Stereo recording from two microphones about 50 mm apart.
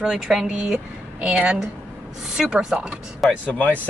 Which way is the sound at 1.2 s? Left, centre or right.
Right.